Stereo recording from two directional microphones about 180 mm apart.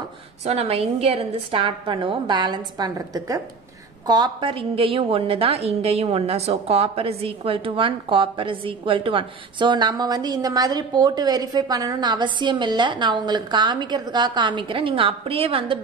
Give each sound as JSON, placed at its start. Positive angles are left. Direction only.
{"t": 0.5, "sound": "a woman's voice", "side_deg": -35}